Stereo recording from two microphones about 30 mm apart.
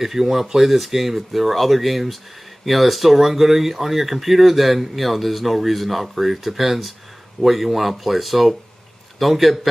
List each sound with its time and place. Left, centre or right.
0.0 s speech: centre